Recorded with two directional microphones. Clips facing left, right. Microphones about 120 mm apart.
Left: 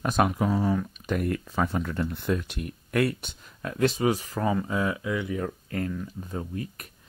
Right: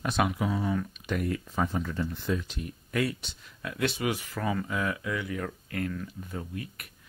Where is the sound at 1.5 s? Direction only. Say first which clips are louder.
Left 2 dB; 80° left.